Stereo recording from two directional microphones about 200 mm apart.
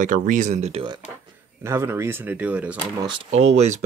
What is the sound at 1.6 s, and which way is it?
Speech, 15° right (ahead or behind).